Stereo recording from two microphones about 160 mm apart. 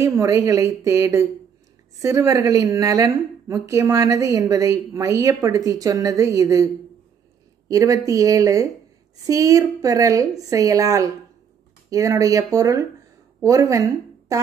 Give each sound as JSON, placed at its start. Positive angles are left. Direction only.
{"t": 0.0, "sound": "a woman's voice", "side_deg": -20}